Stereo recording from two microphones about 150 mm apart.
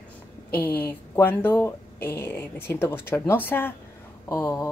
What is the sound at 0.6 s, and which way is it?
Speech, 10° left (ahead or behind).